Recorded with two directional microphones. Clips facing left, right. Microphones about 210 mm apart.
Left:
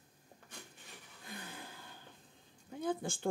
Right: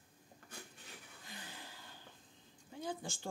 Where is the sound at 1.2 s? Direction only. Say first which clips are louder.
Left 6 dB; 55° left (ahead or behind).